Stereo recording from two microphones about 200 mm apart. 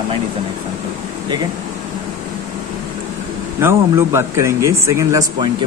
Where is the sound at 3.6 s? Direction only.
10° right (ahead or behind).